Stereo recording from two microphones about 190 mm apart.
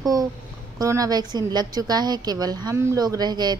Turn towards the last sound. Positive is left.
turn(degrees=-20)  # may be behind; listen again after turning